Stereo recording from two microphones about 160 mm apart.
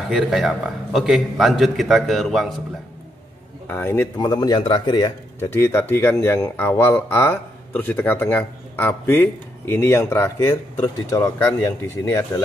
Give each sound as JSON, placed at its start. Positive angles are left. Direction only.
{"t": 0.1, "sound": "a man's voice", "side_deg": -5}
{"t": 3.7, "sound": "speech", "side_deg": 15}
{"t": 4.2, "sound": "a man's voice", "side_deg": 25}
{"t": 5.4, "sound": "speech", "side_deg": 15}